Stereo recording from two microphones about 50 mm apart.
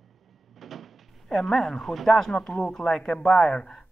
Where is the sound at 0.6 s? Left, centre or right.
Centre.